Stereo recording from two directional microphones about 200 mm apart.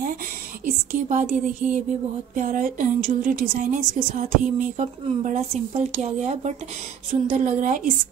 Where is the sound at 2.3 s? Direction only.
40° right (ahead or behind).